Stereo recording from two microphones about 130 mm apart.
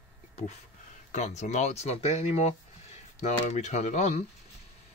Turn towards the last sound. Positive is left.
turn(degrees=60)  # may be behind; listen again after turning